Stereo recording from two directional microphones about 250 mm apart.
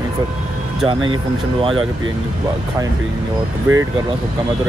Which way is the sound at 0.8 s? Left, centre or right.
Centre.